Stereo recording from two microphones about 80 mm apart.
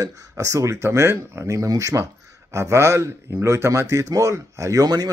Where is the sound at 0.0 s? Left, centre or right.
Right.